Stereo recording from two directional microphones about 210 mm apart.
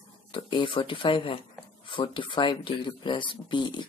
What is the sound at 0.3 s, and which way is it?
Speech, 25° left (ahead or behind).